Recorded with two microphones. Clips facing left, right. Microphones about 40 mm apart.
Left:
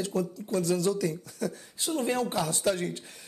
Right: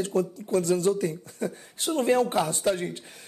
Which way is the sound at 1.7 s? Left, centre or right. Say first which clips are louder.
Right 5 dB; right.